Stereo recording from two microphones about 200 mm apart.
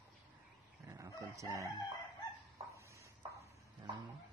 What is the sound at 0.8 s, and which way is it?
Speech, 15° right (ahead or behind).